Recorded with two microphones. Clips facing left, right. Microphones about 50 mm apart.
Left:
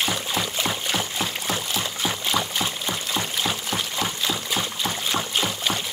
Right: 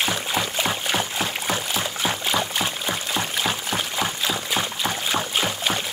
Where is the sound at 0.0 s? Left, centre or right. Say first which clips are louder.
Right 1 dB; centre.